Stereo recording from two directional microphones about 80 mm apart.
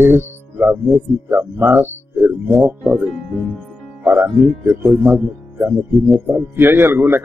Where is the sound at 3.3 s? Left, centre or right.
Centre.